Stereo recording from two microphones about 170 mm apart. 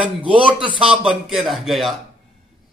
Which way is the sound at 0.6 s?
30° right (ahead or behind).